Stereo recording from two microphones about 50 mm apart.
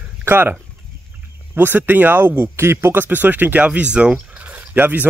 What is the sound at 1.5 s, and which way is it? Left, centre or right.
Speech, right.